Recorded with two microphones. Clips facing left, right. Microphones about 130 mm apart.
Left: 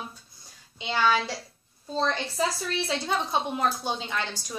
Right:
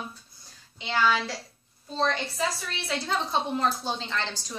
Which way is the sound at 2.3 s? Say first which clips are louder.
Left 3 dB; 25° left (ahead or behind).